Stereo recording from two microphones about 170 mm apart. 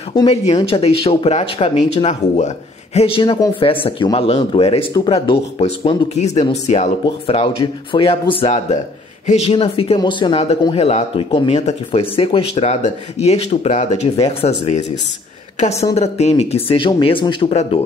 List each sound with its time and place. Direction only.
0.1 s speech: 35° left (ahead or behind)